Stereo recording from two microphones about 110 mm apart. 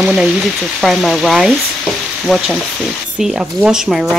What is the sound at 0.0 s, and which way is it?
Speech, 5° right (ahead or behind).